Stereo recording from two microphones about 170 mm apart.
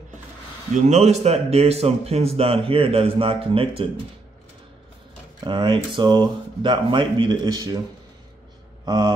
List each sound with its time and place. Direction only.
0.7 s speech: 40° right (ahead or behind)
5.4 s speech: 25° right (ahead or behind)
8.8 s speech: 25° right (ahead or behind)